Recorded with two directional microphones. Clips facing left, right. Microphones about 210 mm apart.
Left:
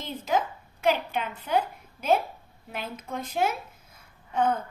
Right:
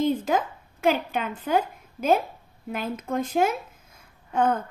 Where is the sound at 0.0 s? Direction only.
50° right (ahead or behind).